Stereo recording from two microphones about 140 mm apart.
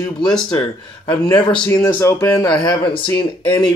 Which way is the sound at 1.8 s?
20° left (ahead or behind).